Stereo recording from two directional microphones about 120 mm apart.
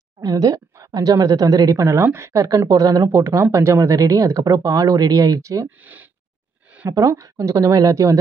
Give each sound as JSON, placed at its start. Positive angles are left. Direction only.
{"t": 0.2, "sound": "a woman's voice", "side_deg": -30}
{"t": 5.8, "sound": "speech", "side_deg": -15}
{"t": 6.9, "sound": "speech", "side_deg": -25}